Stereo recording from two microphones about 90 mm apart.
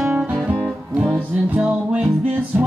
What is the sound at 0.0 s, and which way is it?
Music, 10° right (ahead or behind).